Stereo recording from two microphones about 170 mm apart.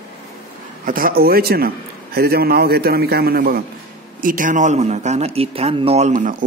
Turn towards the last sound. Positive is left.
turn(degrees=-50)  # may be behind; listen again after turning